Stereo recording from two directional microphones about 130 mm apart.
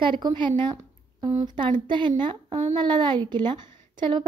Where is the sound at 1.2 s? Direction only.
25° right (ahead or behind).